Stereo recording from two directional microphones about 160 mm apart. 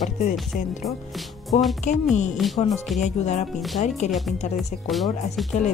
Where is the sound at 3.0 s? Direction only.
50° left (ahead or behind).